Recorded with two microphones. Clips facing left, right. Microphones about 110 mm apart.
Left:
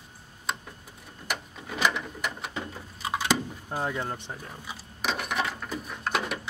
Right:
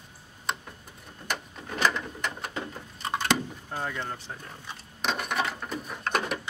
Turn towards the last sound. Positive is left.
turn(degrees=0)  # may be behind; listen again after turning